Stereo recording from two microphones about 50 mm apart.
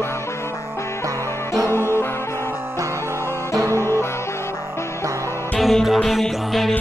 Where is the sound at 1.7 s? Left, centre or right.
Left.